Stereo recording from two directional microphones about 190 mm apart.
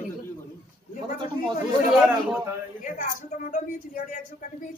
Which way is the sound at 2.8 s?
45° left (ahead or behind).